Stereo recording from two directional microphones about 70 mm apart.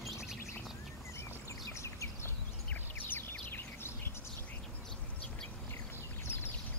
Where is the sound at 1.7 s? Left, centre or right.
Left.